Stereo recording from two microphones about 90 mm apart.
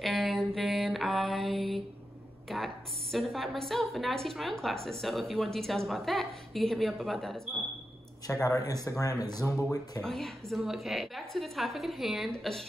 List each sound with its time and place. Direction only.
0.0 s mantra: centre (ahead or behind)
2.5 s a woman's voice: centre (ahead or behind)
8.3 s speech: 35° left (ahead or behind)
10.0 s a woman's voice: 5° left (ahead or behind)